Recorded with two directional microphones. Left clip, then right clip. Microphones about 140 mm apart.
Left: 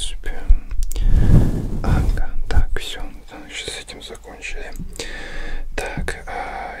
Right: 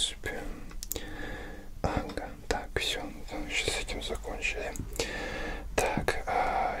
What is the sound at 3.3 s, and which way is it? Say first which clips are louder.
Whispering: left 1 dB; centre (ahead or behind).